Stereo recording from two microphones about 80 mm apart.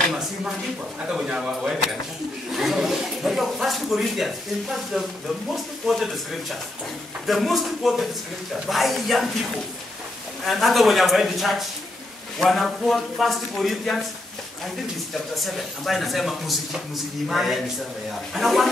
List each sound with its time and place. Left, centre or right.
1.0 s speech: centre
7.2 s speech: centre
10.4 s speech: centre
15.3 s speech: centre